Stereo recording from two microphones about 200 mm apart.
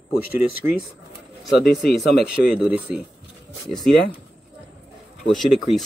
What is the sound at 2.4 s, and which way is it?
Speech, 5° right (ahead or behind).